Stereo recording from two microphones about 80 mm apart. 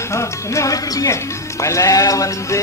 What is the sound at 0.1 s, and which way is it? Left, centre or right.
A man's voice, left.